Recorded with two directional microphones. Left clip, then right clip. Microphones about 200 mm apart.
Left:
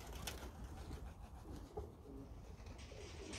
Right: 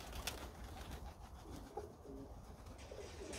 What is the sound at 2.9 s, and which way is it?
Pigeon, 45° right (ahead or behind).